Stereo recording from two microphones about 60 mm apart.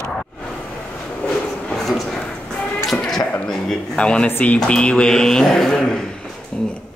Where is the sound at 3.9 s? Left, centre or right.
Centre.